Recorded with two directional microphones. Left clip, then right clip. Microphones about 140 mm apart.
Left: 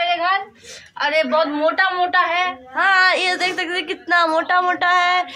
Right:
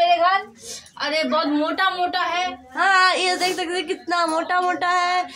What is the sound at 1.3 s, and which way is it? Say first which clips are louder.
A woman's voice: left 4 dB; 15° right (ahead or behind).